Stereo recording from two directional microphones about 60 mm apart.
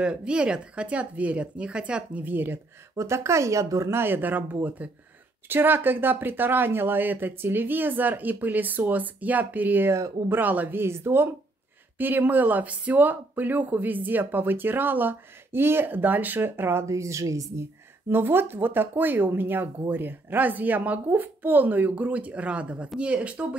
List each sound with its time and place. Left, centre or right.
0.0 s speech: centre
2.2 s speech: right
3.0 s speech: right
3.9 s speech: right
9.8 s speech: right
10.3 s speech: right
10.8 s speech: right
12.0 s speech: right
16.9 s speech: right
18.1 s speech: right; by 23.4 s centre